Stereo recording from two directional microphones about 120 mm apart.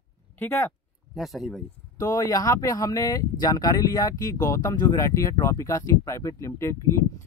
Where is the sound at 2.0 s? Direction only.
30° left (ahead or behind).